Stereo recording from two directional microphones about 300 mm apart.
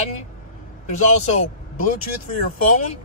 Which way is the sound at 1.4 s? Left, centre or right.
Left.